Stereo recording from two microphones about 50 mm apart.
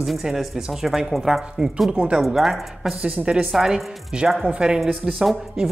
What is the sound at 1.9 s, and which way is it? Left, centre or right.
Speech, right.